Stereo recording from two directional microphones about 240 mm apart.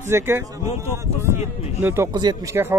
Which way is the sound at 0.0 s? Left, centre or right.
Centre.